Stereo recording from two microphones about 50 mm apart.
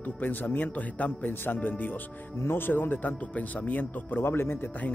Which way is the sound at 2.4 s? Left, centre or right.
Left.